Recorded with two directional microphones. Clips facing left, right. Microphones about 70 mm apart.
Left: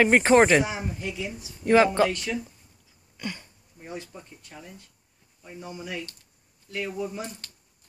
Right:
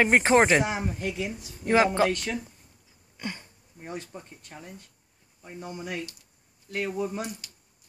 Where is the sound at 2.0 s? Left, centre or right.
Centre.